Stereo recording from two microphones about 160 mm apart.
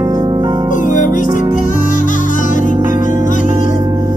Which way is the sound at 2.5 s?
55° left (ahead or behind).